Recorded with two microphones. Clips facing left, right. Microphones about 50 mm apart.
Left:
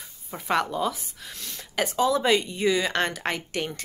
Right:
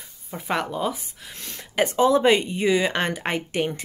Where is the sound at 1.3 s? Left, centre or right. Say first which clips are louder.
Right 2 dB; right.